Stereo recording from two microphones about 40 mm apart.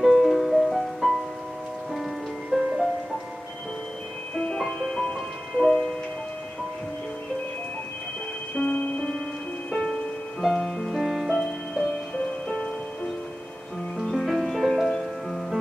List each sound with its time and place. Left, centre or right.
0.0 s music: centre
2.5 s music: centre
4.6 s music: centre
5.6 s tick-tock: centre
8.5 s music: left
9.7 s music: centre
11.3 s music: centre
13.9 s music: centre